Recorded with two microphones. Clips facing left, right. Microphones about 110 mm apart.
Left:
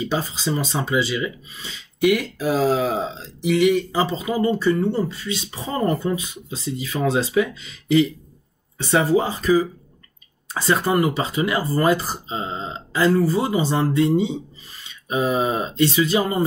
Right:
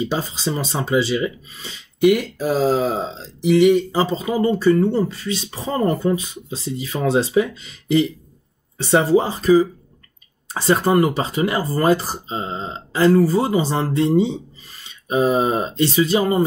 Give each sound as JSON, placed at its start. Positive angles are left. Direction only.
{"t": 0.1, "sound": "speech", "side_deg": -30}